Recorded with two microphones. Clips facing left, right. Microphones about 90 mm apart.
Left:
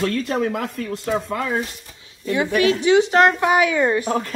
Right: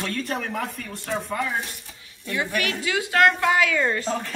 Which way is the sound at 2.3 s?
20° left (ahead or behind).